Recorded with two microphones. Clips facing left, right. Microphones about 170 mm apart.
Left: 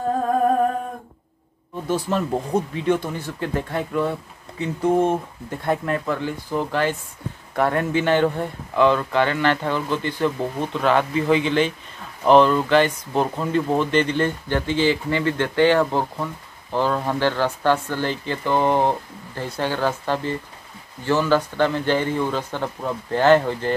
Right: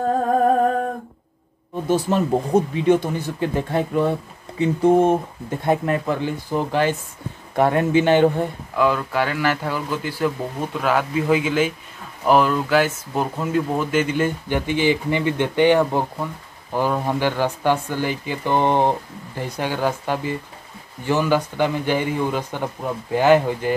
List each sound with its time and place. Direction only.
1.9 s speech: 20° right (ahead or behind)
8.7 s speech: 5° right (ahead or behind)